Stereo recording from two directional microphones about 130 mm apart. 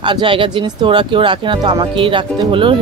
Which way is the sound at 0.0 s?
40° right (ahead or behind).